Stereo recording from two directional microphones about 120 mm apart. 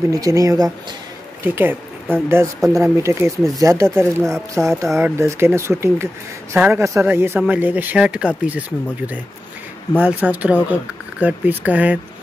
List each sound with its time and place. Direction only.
0.1 s speech: 25° right (ahead or behind)